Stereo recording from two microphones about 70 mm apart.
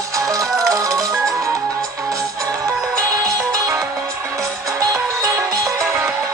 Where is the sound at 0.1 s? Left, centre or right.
Right.